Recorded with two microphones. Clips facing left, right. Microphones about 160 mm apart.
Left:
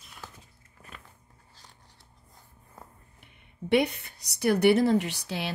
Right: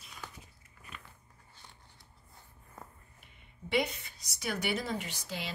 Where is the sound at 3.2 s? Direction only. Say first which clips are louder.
Left 9 dB; 60° left (ahead or behind).